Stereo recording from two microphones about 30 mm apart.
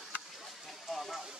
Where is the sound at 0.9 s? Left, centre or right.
Centre.